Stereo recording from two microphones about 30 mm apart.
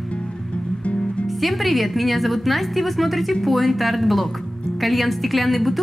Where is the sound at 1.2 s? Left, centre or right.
Centre.